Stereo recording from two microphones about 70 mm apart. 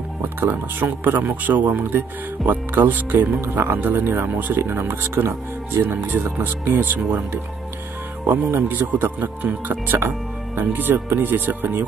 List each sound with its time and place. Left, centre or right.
0.7 s speech: right
8.3 s speech: right